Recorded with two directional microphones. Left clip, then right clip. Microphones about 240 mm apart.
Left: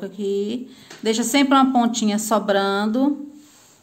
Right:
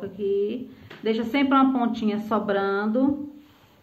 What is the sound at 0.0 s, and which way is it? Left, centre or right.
Speech, left.